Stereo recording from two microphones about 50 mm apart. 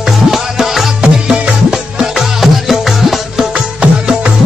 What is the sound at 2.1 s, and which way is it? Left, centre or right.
Music, centre.